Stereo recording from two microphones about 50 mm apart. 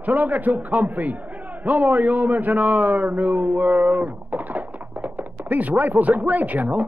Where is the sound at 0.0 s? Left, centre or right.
Right.